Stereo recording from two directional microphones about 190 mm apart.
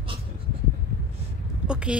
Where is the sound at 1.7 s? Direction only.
5° right (ahead or behind).